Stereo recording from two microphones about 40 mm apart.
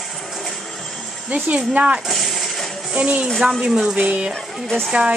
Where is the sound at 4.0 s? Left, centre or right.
Right.